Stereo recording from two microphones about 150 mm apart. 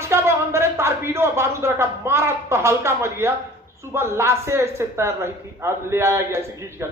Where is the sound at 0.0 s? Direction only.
15° right (ahead or behind).